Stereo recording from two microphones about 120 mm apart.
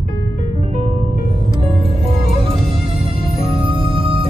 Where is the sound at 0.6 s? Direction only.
55° right (ahead or behind).